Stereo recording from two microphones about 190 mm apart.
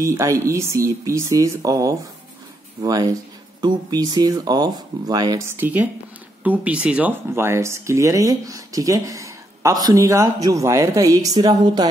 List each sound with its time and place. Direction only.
0.0 s speech: 15° right (ahead or behind)
5.6 s speech: 10° right (ahead or behind)